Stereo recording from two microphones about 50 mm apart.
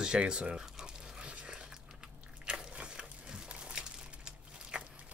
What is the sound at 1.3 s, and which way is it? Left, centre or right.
Dog, centre.